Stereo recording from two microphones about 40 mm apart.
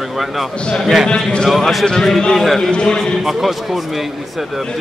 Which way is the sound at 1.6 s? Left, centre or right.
Centre.